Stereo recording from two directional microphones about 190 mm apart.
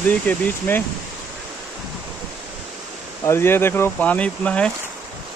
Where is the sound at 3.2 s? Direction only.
15° left (ahead or behind).